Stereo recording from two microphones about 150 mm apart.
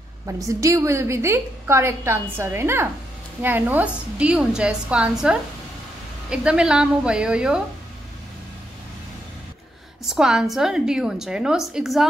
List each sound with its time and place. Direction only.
0.4 s a woman's voice: 20° right (ahead or behind); by 7.6 s 5° right (ahead or behind)
10.0 s a woman's voice: 5° right (ahead or behind)